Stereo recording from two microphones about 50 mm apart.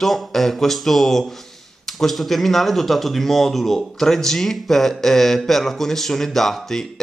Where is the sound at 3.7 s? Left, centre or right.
Centre.